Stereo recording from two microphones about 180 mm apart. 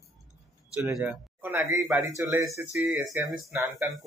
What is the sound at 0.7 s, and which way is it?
Speech, 5° right (ahead or behind).